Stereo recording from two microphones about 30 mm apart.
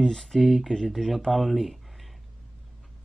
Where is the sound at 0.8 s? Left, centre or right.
Centre.